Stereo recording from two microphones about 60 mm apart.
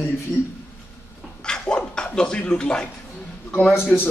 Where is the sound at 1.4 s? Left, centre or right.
Centre.